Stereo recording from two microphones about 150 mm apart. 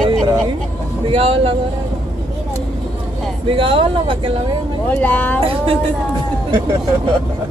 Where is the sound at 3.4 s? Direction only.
35° right (ahead or behind).